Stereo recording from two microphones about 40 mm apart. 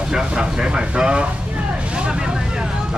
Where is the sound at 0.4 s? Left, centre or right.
Right.